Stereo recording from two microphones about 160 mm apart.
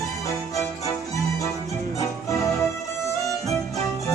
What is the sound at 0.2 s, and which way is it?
Music, 20° left (ahead or behind).